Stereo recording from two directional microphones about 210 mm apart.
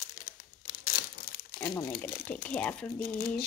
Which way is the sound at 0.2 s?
40° left (ahead or behind).